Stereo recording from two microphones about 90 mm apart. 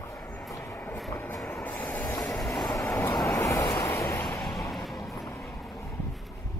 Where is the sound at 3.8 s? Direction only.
30° left (ahead or behind).